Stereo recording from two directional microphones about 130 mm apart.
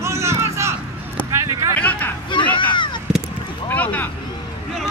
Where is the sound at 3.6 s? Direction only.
10° left (ahead or behind).